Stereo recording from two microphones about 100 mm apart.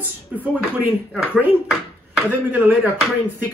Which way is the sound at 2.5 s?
15° right (ahead or behind).